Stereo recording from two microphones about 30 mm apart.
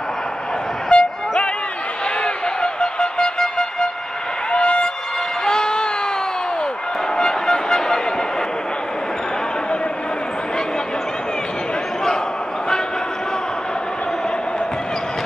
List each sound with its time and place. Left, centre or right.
0.8 s vehicle: left
2.2 s music: left
4.5 s a sound: left
5.4 s music: left
7.2 s vehicle: left